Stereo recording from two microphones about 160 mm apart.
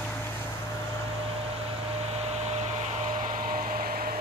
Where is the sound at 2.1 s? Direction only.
40° right (ahead or behind); by 4.2 s 65° right (ahead or behind).